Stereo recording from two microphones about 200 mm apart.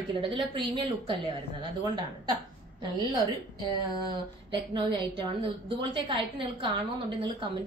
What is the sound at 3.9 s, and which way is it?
A woman's voice, 25° right (ahead or behind).